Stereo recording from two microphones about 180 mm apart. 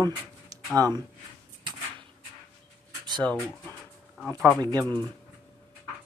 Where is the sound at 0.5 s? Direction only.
20° right (ahead or behind).